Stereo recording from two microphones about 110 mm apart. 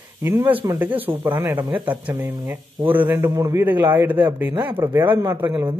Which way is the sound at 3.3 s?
30° right (ahead or behind).